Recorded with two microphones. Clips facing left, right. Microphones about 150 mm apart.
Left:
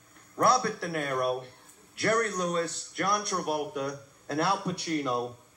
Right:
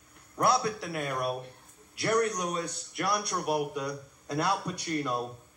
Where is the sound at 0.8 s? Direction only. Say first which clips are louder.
Left 3 dB; 5° right (ahead or behind).